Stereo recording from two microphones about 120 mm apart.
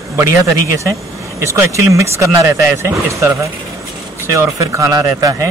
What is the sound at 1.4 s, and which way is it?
Speech, 25° right (ahead or behind).